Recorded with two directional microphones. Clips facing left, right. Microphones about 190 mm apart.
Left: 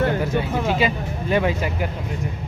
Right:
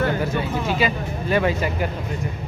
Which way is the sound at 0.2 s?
20° left (ahead or behind).